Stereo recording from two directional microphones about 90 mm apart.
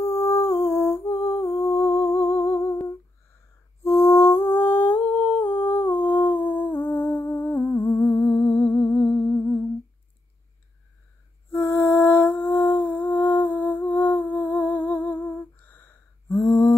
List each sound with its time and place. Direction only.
0.0 s humming: 30° left (ahead or behind)
3.8 s humming: 30° left (ahead or behind)
11.5 s music: 25° left (ahead or behind)
16.4 s a sound: 15° left (ahead or behind)